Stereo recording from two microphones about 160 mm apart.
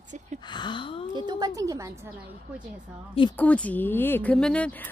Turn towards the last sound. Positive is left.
turn(degrees=10)  # may be behind; listen again after turning